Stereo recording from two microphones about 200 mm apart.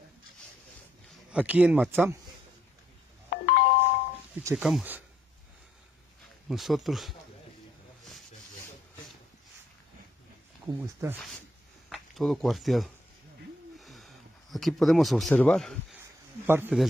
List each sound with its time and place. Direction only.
1.3 s speech: 5° right (ahead or behind)
3.3 s doorbell: 50° left (ahead or behind)
4.4 s speech: 10° right (ahead or behind)
6.5 s speech: centre (ahead or behind)
10.7 s speech: 10° right (ahead or behind)
11.9 s speech: centre (ahead or behind)
13.7 s a sound: centre (ahead or behind)
16.4 s speech: 10° right (ahead or behind)